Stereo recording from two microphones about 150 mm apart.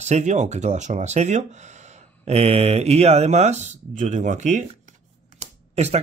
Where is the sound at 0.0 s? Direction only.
50° right (ahead or behind).